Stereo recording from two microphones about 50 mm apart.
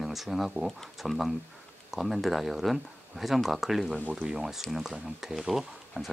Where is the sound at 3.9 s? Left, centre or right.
Right.